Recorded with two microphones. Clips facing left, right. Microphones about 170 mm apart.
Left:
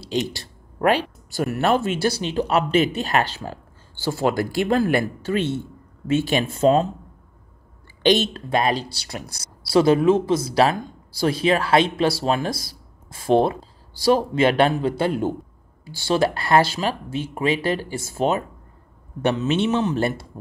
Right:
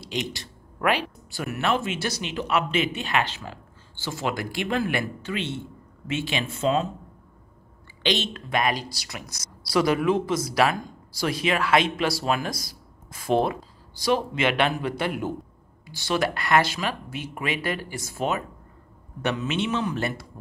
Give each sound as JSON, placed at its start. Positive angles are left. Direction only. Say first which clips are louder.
{"t": 0.0, "sound": "speech", "louder": "left 6 dB", "side_deg": 35}
{"t": 8.0, "sound": "speech", "louder": "left 8 dB", "side_deg": 40}